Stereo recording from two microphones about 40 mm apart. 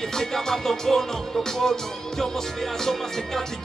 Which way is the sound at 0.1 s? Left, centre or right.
Centre.